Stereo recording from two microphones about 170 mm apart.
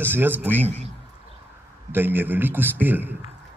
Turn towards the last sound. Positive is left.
turn(degrees=-10)  # may be behind; listen again after turning